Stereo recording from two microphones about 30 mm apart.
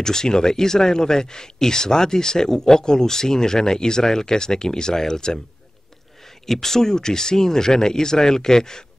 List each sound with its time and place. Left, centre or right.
0.0 s speech: left
6.4 s speech: centre